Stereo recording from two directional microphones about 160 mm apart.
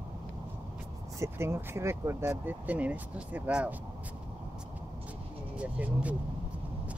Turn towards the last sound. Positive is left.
turn(degrees=-10)  # may be behind; listen again after turning